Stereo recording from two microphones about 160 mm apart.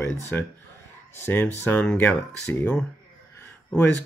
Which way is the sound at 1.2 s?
10° left (ahead or behind).